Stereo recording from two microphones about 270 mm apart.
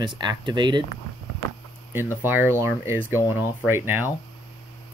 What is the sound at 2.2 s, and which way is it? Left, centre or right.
Speech, centre.